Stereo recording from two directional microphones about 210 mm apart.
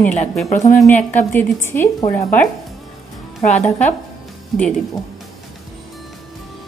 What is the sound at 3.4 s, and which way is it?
Speech, 30° left (ahead or behind).